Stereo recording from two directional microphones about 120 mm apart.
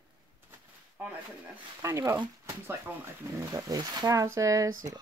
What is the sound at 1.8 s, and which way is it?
Speech, 25° right (ahead or behind).